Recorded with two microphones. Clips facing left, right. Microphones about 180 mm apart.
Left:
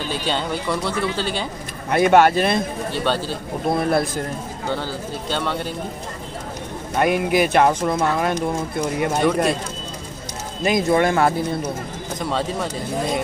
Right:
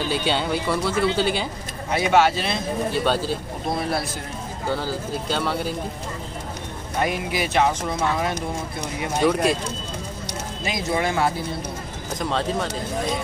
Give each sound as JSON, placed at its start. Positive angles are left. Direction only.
{"t": 0.3, "sound": "speech", "side_deg": -10}
{"t": 1.9, "sound": "speech", "side_deg": 55}
{"t": 3.6, "sound": "speech", "side_deg": 55}
{"t": 4.6, "sound": "speech", "side_deg": -5}
{"t": 7.0, "sound": "speech", "side_deg": 55}
{"t": 9.2, "sound": "speech", "side_deg": 0}
{"t": 10.6, "sound": "speech", "side_deg": 55}
{"t": 12.2, "sound": "speech", "side_deg": 0}